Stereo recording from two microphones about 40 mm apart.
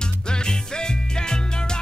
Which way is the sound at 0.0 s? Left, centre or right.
Centre.